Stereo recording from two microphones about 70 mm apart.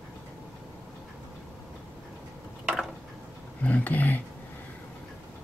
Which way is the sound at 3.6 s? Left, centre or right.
Left.